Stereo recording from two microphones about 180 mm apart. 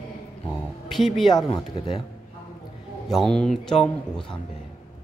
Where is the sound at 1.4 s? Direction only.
30° left (ahead or behind).